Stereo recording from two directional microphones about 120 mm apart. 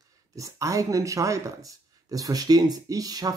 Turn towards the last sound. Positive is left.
turn(degrees=-30)  # may be behind; listen again after turning